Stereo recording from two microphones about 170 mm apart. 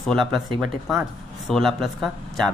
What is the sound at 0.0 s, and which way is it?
Speech, centre (ahead or behind).